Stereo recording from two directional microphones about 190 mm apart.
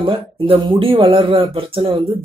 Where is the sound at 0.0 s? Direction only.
25° right (ahead or behind).